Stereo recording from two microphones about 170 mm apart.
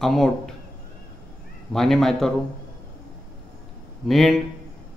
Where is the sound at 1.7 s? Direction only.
Centre (ahead or behind).